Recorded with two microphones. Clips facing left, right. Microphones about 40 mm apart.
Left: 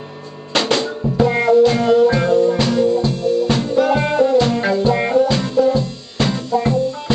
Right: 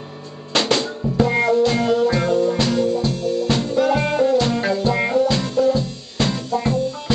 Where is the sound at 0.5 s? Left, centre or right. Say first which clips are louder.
Left 2 dB; centre.